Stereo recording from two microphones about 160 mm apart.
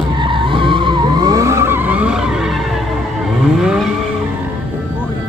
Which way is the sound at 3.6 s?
5° right (ahead or behind).